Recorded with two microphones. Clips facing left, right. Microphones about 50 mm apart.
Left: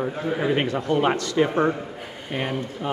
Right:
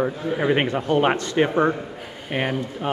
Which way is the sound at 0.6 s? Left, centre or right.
Right.